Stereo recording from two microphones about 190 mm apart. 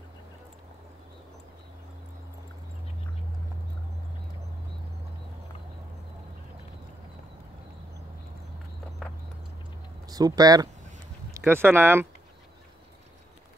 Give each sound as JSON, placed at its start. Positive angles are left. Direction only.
{"t": 10.0, "sound": "speech", "side_deg": -20}